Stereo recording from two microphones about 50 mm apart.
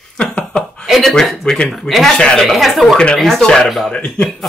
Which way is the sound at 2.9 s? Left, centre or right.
Left.